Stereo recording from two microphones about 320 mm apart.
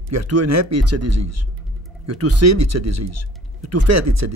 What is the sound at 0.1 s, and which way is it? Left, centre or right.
Speech, right.